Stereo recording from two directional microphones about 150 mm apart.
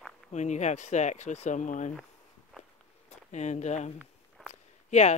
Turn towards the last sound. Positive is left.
turn(degrees=50)  # may be behind; listen again after turning